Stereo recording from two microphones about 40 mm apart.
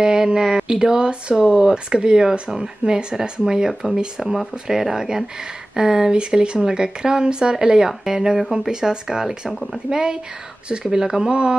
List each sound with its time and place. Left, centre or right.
0.0 s speech: centre